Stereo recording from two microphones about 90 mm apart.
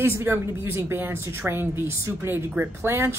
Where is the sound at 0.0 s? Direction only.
25° right (ahead or behind).